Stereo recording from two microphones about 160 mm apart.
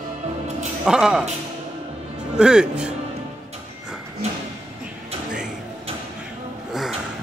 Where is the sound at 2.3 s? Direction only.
5° right (ahead or behind).